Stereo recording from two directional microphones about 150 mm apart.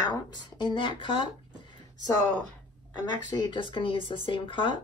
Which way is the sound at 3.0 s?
30° left (ahead or behind).